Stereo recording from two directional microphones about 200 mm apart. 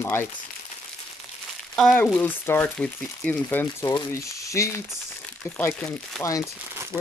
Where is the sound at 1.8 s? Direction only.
Centre (ahead or behind).